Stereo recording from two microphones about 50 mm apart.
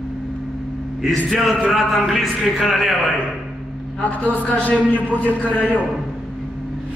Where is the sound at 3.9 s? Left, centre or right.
Left.